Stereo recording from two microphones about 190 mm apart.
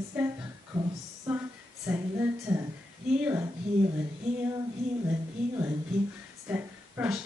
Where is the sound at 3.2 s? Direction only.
10° right (ahead or behind).